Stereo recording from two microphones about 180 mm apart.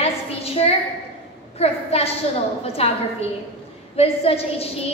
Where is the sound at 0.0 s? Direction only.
35° left (ahead or behind).